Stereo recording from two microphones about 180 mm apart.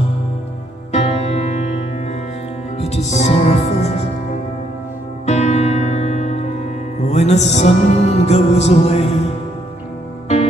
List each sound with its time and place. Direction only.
0.9 s music: 35° left (ahead or behind)
2.8 s music: 35° left (ahead or behind)
5.2 s music: 40° left (ahead or behind)